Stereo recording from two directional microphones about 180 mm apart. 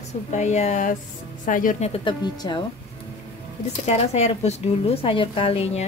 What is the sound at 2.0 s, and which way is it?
Speech, 25° left (ahead or behind).